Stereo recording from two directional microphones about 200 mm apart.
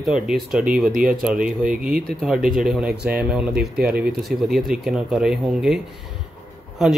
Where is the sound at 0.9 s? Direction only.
45° right (ahead or behind).